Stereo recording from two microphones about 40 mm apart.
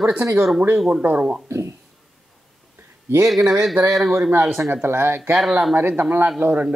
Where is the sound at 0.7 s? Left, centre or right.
Centre.